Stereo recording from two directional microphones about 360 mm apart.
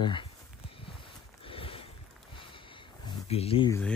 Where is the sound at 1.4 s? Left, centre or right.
Centre.